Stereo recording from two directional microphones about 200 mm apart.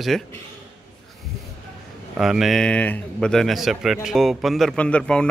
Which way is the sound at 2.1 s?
Centre (ahead or behind).